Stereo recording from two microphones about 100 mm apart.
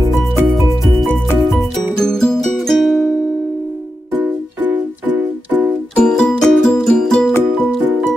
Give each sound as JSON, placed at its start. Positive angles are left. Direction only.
{"t": 0.5, "sound": "music", "side_deg": 0}
{"t": 4.1, "sound": "music", "side_deg": -15}
{"t": 5.9, "sound": "music", "side_deg": 5}